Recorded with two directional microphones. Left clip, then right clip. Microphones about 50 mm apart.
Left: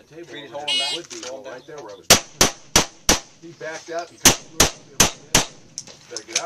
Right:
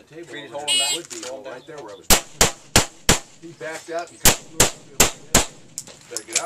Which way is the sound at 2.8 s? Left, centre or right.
Centre.